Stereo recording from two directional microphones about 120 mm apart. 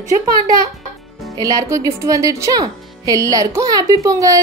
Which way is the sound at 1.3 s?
30° right (ahead or behind).